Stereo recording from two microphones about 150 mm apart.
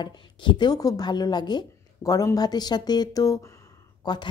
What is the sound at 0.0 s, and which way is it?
A woman's voice, 30° left (ahead or behind).